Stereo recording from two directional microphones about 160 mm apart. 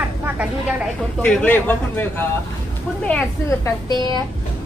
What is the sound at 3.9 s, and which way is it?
Speech, 25° left (ahead or behind).